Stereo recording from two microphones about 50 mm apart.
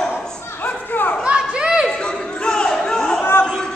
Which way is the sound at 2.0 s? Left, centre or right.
Centre.